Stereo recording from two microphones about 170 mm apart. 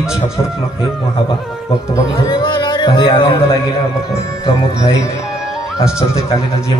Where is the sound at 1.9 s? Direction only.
25° left (ahead or behind).